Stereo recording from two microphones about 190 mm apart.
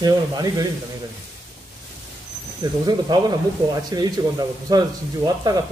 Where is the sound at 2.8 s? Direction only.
20° right (ahead or behind).